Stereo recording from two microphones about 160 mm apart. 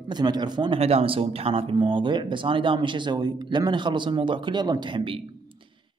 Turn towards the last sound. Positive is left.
turn(degrees=-30)  # may be behind; listen again after turning